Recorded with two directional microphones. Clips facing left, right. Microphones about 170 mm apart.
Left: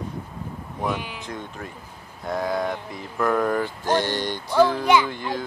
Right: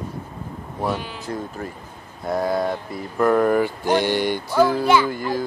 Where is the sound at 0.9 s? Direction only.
15° left (ahead or behind).